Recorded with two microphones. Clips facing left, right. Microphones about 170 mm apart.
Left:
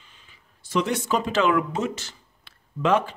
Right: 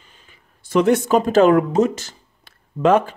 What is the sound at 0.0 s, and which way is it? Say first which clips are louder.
Speech: right 4 dB; 45° right (ahead or behind).